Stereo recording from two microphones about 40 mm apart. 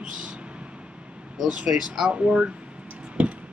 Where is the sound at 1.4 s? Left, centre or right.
Right.